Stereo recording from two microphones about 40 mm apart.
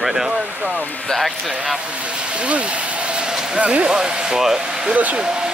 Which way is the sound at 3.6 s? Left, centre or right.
Right.